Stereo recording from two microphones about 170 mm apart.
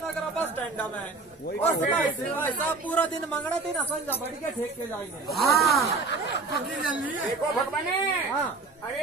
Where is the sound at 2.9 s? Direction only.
10° left (ahead or behind).